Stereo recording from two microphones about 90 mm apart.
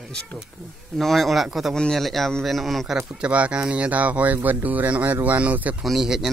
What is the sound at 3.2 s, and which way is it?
Speech, 15° right (ahead or behind).